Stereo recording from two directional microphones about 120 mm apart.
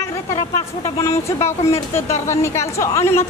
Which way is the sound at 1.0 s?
25° left (ahead or behind).